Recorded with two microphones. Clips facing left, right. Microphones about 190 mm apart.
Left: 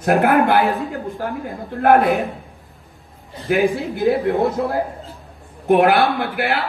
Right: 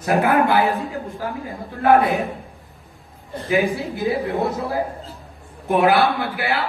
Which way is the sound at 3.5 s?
Centre (ahead or behind).